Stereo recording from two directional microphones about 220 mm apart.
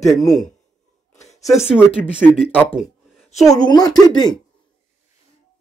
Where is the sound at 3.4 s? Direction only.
20° left (ahead or behind).